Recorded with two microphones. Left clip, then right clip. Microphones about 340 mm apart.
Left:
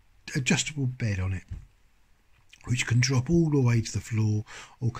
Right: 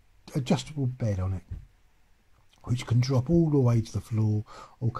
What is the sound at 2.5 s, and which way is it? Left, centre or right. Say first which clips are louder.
Speech: left 5 dB; centre.